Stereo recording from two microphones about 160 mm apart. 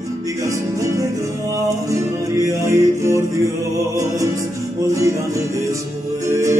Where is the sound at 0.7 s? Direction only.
20° right (ahead or behind).